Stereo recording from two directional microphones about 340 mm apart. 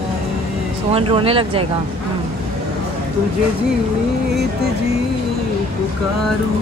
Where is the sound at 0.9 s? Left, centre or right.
Centre.